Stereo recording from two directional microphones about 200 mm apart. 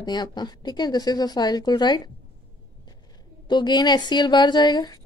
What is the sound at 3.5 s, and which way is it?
A woman's voice, 20° left (ahead or behind).